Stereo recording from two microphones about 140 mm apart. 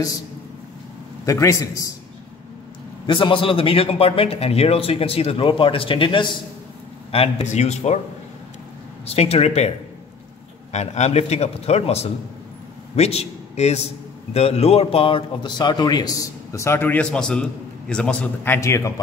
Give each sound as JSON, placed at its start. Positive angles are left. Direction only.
{"t": 1.2, "sound": "a man's voice", "side_deg": 25}
{"t": 3.1, "sound": "a man's voice", "side_deg": 35}
{"t": 9.0, "sound": "a man's voice", "side_deg": 45}
{"t": 10.7, "sound": "a man's voice", "side_deg": 55}